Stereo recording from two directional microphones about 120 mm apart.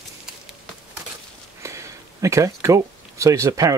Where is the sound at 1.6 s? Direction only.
25° right (ahead or behind).